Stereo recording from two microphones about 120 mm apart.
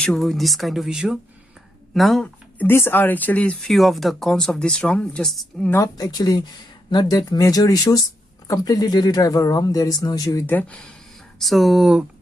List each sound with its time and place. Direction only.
0.0 s speech: centre (ahead or behind)
2.2 s speech: 20° left (ahead or behind); by 5.7 s centre (ahead or behind)
5.7 s speech: 30° left (ahead or behind)
10.4 s speech: 15° left (ahead or behind)
11.3 s speech: centre (ahead or behind)